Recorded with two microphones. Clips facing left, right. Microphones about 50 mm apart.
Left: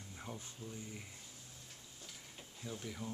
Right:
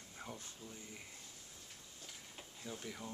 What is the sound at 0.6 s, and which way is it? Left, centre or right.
Speech, left.